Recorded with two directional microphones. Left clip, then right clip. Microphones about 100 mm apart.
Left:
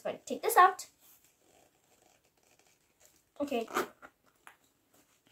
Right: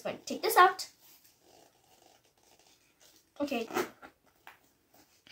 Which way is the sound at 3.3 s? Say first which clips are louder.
Even; 15° left (ahead or behind).